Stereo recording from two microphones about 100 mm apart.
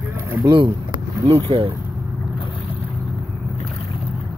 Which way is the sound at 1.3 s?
70° right (ahead or behind).